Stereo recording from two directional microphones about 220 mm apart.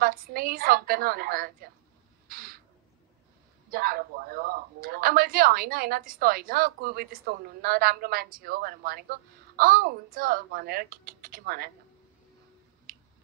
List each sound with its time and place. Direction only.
0.0 s a woman's voice: 40° right (ahead or behind)
2.2 s a sound: 40° right (ahead or behind)
3.7 s speech: 40° right (ahead or behind)
12.9 s finger snapping: 40° right (ahead or behind)